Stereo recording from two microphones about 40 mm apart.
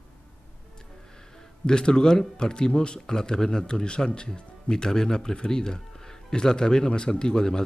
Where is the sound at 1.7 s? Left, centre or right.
Centre.